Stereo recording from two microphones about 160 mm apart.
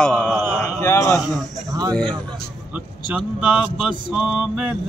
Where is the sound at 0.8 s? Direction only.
20° left (ahead or behind).